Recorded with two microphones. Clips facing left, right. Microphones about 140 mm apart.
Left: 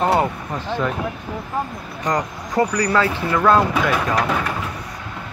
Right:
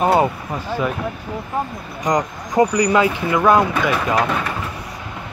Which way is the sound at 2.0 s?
15° right (ahead or behind).